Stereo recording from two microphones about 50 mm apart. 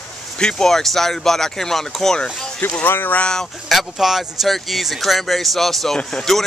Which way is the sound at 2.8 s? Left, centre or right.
Left.